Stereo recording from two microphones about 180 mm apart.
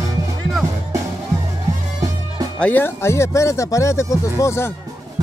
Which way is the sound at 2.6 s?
10° left (ahead or behind).